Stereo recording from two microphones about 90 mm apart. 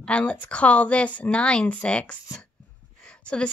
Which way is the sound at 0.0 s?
10° left (ahead or behind).